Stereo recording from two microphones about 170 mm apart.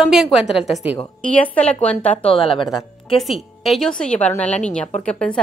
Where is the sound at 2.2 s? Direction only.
30° left (ahead or behind).